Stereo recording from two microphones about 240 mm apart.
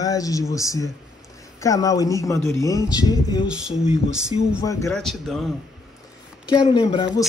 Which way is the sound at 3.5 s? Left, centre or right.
Centre.